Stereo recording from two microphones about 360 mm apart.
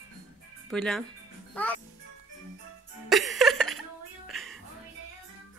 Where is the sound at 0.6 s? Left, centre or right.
Centre.